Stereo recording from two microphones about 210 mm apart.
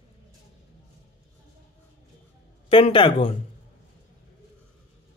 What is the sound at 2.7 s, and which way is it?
Speech, 25° left (ahead or behind).